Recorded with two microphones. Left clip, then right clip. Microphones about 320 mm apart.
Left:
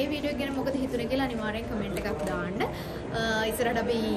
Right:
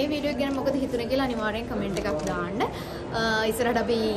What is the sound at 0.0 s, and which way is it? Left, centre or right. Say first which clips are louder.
A man's voice: right 3 dB; centre.